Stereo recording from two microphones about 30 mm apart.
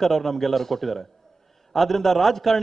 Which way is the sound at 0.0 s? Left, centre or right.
Centre.